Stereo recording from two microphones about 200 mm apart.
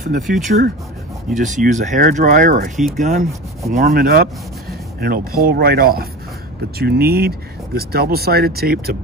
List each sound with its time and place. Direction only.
0.1 s speech: 40° right (ahead or behind)
3.7 s speech: 50° right (ahead or behind)